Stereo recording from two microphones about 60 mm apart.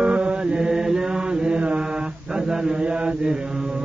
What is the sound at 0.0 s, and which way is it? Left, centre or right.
Mantra, centre.